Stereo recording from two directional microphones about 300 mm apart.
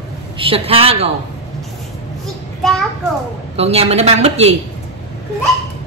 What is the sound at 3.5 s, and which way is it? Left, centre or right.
A woman's voice, centre.